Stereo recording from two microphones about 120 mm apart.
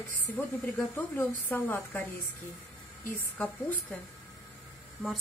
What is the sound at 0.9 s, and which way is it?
A woman's voice, 15° left (ahead or behind).